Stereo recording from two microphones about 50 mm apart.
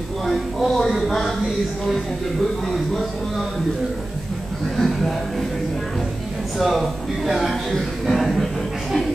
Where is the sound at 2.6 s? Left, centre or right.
Centre.